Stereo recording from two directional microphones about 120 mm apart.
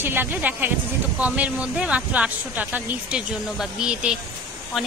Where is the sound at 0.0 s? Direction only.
15° right (ahead or behind).